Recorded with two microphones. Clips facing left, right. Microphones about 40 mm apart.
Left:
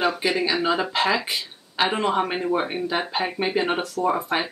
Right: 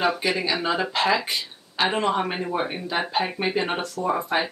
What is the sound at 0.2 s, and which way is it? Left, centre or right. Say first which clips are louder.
Speech: left 2 dB; centre.